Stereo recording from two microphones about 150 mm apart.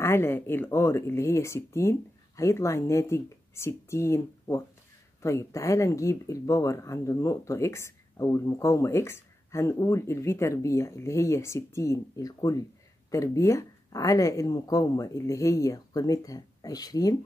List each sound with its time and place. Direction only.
0.0 s speech: 15° left (ahead or behind)